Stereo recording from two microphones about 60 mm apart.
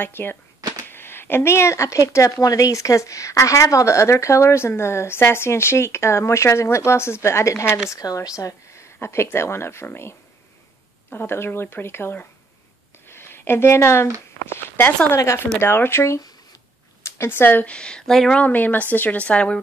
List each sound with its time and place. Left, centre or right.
0.0 s speech: left
7.9 s speech: left
8.7 s speech: left
11.1 s speech: left
13.1 s a sound: left
14.4 s speech: left
17.0 s speech: left
17.6 s speech: centre
18.3 s a woman's voice: left